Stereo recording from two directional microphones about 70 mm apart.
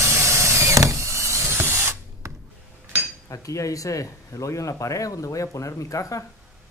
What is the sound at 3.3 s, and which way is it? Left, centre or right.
Speech, left.